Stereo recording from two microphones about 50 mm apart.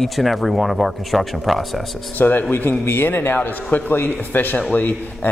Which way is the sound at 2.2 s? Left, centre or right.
Left.